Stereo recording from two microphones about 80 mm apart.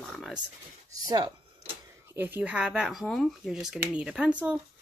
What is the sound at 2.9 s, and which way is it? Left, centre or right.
Speech, centre.